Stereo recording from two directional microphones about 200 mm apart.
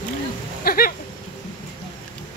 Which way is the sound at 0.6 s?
45° left (ahead or behind).